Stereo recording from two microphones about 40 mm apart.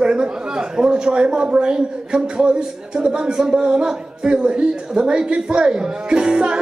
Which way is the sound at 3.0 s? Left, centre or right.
Right.